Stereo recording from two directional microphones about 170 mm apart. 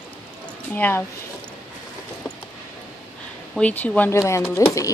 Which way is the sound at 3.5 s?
10° left (ahead or behind).